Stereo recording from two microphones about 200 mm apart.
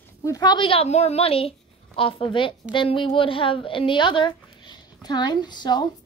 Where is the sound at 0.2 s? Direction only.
20° left (ahead or behind).